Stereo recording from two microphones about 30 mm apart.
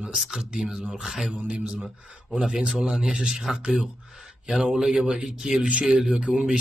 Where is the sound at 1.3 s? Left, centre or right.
Right.